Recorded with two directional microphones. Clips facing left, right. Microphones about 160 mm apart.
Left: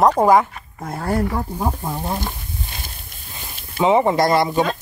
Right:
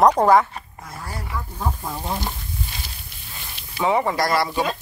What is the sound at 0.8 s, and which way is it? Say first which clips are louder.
Speech: left 15 dB; 55° left (ahead or behind).